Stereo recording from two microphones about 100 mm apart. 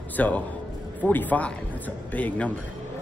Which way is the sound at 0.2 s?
15° left (ahead or behind).